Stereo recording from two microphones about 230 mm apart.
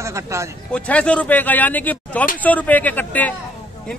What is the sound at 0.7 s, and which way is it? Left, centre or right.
A man's voice, centre.